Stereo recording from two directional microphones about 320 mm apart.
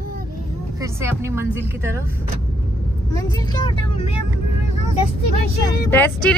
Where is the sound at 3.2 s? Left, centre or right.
Centre.